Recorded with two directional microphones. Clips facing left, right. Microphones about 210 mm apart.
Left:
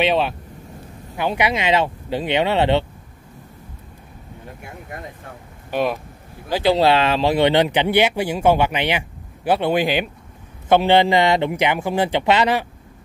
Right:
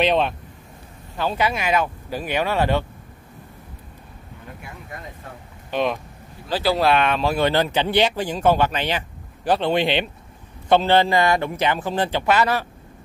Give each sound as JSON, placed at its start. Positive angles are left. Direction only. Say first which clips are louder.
{"t": 0.0, "sound": "speech", "louder": "even", "side_deg": 0}
{"t": 1.1, "sound": "speech", "louder": "left 2 dB", "side_deg": 15}
{"t": 5.7, "sound": "speech", "louder": "left 1 dB", "side_deg": 10}
{"t": 6.5, "sound": "speech", "louder": "left 3 dB", "side_deg": 20}
{"t": 10.7, "sound": "speech", "louder": "left 2 dB", "side_deg": 15}